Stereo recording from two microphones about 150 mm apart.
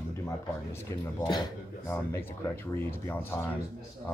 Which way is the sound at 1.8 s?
15° left (ahead or behind).